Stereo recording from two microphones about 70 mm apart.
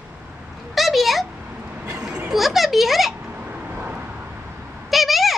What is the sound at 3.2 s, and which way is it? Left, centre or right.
Vehicle, right.